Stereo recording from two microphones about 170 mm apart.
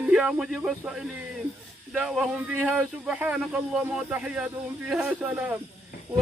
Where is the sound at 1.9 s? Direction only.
5° right (ahead or behind).